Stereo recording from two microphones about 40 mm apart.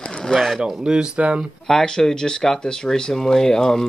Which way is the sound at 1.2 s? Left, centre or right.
Right.